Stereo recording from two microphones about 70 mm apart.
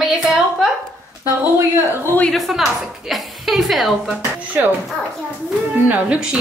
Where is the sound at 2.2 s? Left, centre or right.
Centre.